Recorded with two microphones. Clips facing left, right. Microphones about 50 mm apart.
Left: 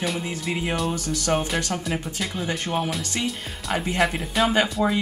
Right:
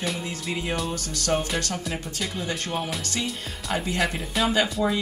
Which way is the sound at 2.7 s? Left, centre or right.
Centre.